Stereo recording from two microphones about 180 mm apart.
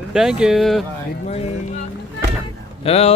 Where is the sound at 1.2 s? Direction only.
40° left (ahead or behind).